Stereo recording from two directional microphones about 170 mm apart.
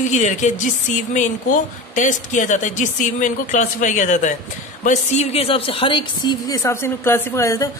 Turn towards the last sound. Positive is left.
turn(degrees=20)  # may be behind; listen again after turning